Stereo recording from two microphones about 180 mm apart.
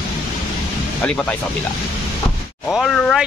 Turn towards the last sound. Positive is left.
turn(degrees=0)  # may be behind; listen again after turning